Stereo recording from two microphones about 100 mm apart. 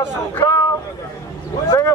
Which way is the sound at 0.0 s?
25° left (ahead or behind).